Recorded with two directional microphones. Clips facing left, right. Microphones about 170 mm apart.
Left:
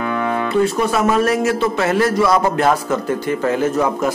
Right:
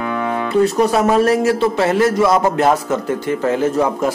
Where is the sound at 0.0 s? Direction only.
10° right (ahead or behind).